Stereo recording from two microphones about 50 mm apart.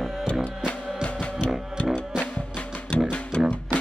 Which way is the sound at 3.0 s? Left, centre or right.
Left.